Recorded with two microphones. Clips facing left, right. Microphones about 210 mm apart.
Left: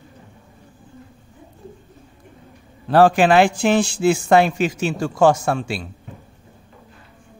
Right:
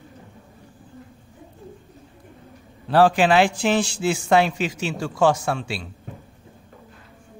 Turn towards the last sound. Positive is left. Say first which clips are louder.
# left 4 dB
turn(degrees=45)  # may be behind; listen again after turning